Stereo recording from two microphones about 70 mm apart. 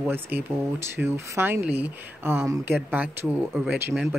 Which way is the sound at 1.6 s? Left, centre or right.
Right.